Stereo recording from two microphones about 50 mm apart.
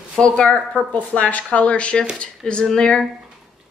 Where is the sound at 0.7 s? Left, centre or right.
Left.